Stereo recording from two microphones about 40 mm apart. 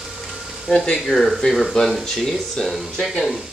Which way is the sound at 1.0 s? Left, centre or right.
Centre.